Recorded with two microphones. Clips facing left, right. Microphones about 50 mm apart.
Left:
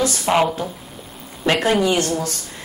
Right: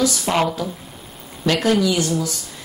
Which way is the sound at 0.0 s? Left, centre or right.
Left.